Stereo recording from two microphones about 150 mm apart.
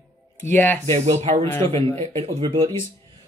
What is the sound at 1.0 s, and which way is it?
Speech, 50° right (ahead or behind).